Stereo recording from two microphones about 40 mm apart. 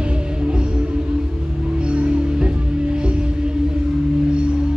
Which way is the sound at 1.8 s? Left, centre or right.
Right.